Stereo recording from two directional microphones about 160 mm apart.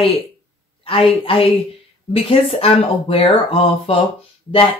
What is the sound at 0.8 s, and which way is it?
Speech, 35° left (ahead or behind).